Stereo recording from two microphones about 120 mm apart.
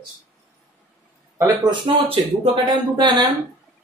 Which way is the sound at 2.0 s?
45° right (ahead or behind).